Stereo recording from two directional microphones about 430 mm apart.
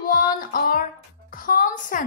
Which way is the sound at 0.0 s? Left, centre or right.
Centre.